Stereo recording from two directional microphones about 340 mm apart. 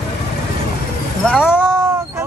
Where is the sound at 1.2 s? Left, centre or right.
Centre.